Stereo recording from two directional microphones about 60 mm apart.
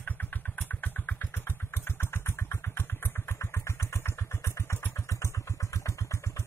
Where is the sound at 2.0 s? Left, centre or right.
Left.